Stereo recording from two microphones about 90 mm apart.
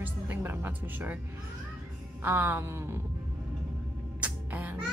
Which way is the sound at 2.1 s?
25° right (ahead or behind).